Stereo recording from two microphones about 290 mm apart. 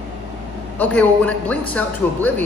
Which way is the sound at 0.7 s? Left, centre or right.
Centre.